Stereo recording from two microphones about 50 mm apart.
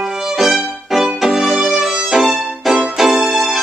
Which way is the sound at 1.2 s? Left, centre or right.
Centre.